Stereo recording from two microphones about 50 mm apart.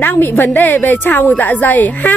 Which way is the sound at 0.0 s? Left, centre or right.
Left.